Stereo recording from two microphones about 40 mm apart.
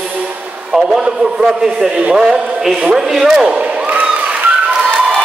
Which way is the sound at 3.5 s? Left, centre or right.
Right.